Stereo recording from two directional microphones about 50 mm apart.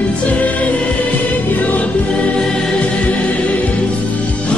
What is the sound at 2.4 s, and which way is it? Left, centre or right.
Music, centre.